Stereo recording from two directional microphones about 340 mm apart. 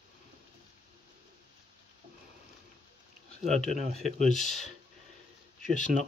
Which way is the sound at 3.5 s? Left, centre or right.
Left.